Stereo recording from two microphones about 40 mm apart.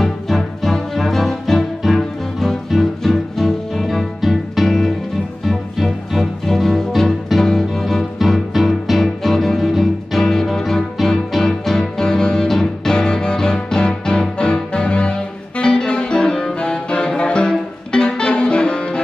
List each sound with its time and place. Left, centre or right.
0.0 s music: centre
12.0 s music: centre